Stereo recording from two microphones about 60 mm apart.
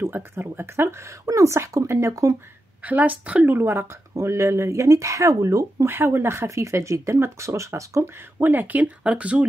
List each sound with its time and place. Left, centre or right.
0.0 s speech: right
1.2 s speech: right
2.8 s speech: right
3.5 s speech: right
4.1 s speech: right
5.9 s speech: right
8.4 s speech: right